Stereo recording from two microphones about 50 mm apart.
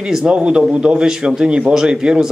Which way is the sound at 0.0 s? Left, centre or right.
Centre.